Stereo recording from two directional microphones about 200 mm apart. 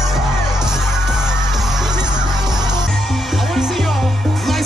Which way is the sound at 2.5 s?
5° right (ahead or behind).